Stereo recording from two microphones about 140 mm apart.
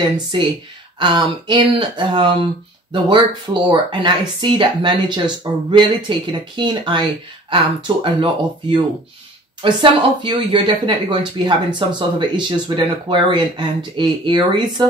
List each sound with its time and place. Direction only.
0.9 s speech: 35° right (ahead or behind)